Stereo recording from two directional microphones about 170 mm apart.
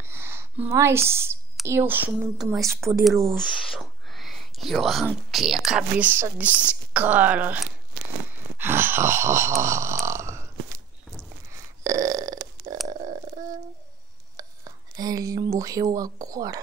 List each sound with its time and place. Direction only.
0.0 s a sound: 15° right (ahead or behind)
1.7 s speech: 15° right (ahead or behind)
8.3 s a sound: 10° right (ahead or behind)
11.8 s burping: 20° right (ahead or behind)
12.8 s stomach rumble: 50° right (ahead or behind)
14.3 s speech: 20° right (ahead or behind)